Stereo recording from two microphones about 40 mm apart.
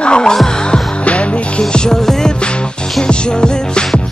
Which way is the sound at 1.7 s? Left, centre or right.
Left.